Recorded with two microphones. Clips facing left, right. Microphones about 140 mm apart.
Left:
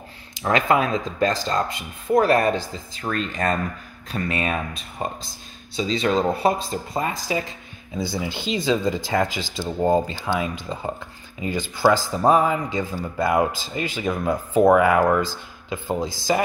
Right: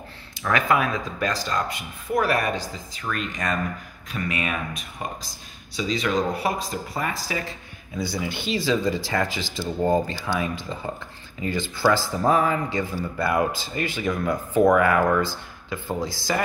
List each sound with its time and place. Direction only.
0.4 s speech: 25° left (ahead or behind)